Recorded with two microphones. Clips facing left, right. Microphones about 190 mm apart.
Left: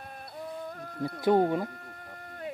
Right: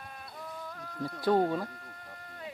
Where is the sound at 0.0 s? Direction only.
45° left (ahead or behind).